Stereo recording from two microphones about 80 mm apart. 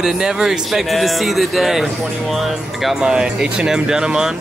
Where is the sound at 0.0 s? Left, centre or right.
Centre.